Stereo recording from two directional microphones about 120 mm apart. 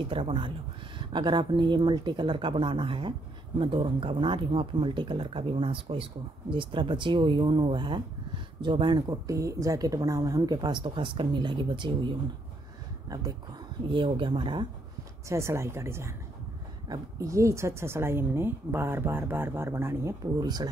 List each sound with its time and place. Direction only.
0.0 s speech: 45° right (ahead or behind)
13.8 s speech: 45° right (ahead or behind)
15.2 s speech: 25° right (ahead or behind)
20.3 s speech: 35° right (ahead or behind)